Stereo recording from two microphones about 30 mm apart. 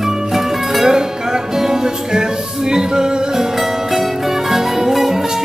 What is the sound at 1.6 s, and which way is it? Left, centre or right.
Music, centre.